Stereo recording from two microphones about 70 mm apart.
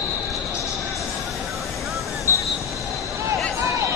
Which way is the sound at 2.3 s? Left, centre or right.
Left.